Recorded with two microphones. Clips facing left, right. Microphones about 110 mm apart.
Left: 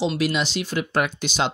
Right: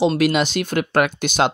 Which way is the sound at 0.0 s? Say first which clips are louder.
Right 6 dB; 55° right (ahead or behind).